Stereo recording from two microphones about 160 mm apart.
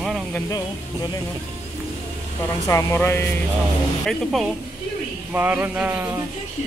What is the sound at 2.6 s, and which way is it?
Speech, 15° left (ahead or behind).